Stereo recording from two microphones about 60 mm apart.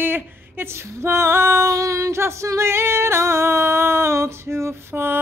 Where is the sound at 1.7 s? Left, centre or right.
Right.